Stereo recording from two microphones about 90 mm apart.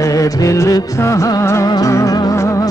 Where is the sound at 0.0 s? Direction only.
40° left (ahead or behind).